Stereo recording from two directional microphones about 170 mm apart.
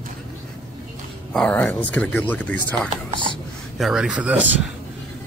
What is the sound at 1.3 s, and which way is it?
Speech, 5° left (ahead or behind).